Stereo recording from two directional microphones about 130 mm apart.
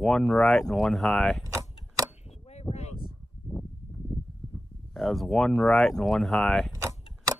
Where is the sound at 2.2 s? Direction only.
55° left (ahead or behind).